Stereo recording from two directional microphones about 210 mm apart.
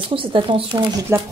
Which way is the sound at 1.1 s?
15° right (ahead or behind).